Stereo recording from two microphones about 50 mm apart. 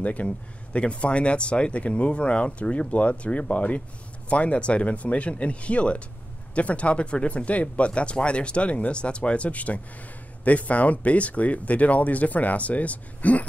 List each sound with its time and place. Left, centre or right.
0.0 s speech: left